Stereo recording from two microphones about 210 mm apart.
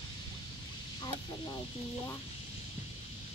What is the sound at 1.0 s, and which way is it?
Speech, 20° left (ahead or behind).